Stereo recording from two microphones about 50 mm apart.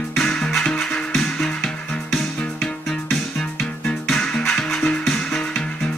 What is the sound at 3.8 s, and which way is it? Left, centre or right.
Music, centre.